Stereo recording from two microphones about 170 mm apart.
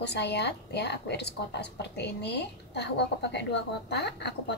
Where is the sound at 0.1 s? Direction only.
80° left.